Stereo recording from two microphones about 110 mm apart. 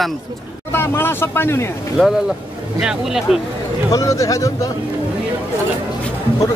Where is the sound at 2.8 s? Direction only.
5° right (ahead or behind).